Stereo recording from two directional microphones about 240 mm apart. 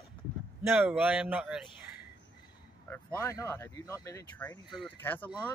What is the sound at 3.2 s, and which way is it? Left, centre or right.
Speech, centre.